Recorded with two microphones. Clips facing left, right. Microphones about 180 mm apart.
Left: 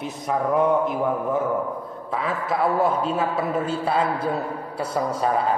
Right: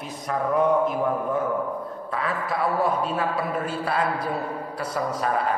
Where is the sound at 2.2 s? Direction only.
25° left (ahead or behind).